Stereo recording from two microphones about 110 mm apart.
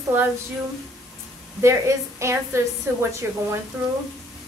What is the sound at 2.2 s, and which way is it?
A woman's voice, 25° right (ahead or behind).